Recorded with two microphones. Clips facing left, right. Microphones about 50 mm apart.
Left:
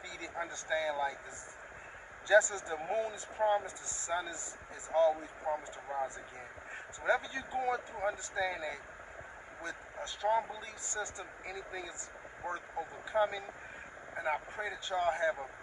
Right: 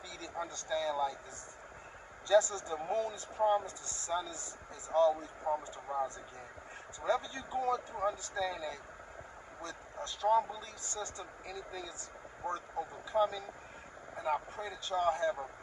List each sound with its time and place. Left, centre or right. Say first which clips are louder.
0.2 s speech: even; left
2.2 s speech: left 1 dB; left